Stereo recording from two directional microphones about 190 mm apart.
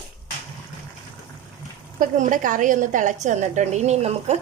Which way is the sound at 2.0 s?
45° right (ahead or behind).